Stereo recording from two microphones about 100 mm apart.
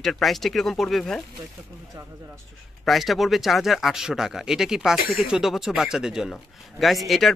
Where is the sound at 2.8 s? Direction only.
Centre (ahead or behind).